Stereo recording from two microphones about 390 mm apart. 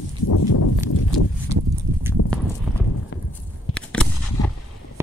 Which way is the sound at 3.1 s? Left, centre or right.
Left.